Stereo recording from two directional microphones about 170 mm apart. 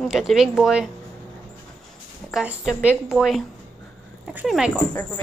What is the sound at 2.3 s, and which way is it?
A woman's voice, 5° right (ahead or behind).